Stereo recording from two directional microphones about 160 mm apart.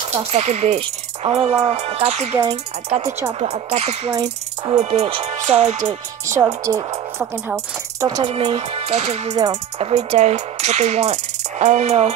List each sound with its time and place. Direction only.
0.2 s speech: 40° right (ahead or behind)
3.3 s speech: 40° right (ahead or behind)
4.1 s speech: 25° right (ahead or behind)
4.9 s speech: 40° right (ahead or behind)
5.5 s music: 45° right (ahead or behind)
6.2 s a woman's voice: 20° right (ahead or behind); by 9.3 s 45° right (ahead or behind)
9.3 s a woman's voice: 25° right (ahead or behind)
9.8 s speech: 40° right (ahead or behind)